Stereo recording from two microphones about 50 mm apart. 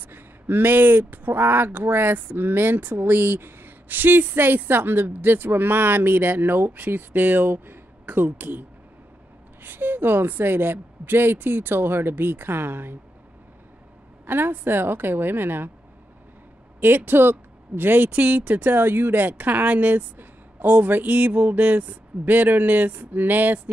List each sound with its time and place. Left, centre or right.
0.1 s speech: right
14.2 s speech: right
16.8 s speech: right